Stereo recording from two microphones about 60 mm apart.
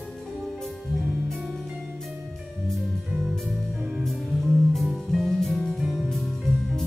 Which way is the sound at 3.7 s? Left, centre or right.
Centre.